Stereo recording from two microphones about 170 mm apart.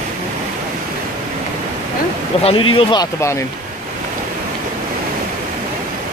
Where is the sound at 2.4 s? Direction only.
30° left (ahead or behind).